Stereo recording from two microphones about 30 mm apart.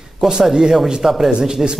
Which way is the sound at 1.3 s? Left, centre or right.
Right.